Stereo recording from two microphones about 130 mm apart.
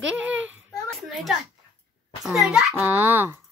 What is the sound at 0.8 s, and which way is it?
Speech, centre (ahead or behind).